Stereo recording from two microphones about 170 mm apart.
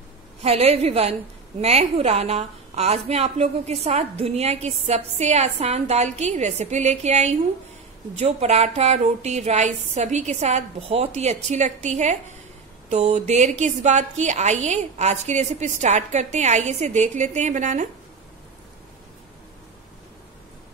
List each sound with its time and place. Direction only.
0.4 s a woman's voice: 40° right (ahead or behind)